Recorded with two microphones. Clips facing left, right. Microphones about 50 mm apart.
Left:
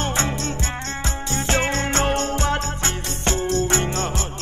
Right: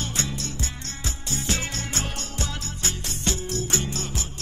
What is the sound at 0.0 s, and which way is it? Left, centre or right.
Music, left.